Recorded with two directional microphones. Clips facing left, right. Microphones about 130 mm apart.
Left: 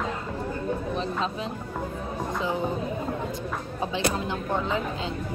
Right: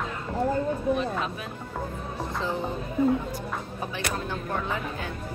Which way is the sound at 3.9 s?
20° left (ahead or behind).